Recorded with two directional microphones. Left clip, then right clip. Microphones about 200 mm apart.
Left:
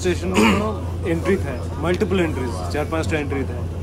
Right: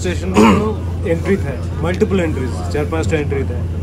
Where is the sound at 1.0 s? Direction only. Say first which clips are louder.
Right 4 dB; 20° left (ahead or behind).